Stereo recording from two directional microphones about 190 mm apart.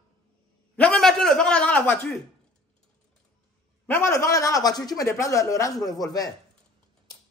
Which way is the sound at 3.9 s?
15° left (ahead or behind).